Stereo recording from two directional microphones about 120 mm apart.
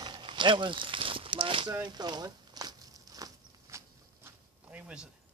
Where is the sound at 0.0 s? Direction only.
40° right (ahead or behind); by 4.3 s 25° right (ahead or behind).